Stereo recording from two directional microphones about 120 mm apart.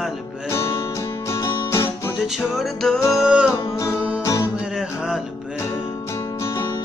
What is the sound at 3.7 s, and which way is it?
Music, 25° left (ahead or behind).